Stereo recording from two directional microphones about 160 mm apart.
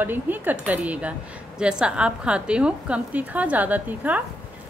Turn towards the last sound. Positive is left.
turn(degrees=-10)  # may be behind; listen again after turning